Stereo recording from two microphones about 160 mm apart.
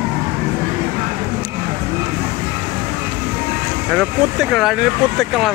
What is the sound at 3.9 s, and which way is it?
Speech, centre (ahead or behind).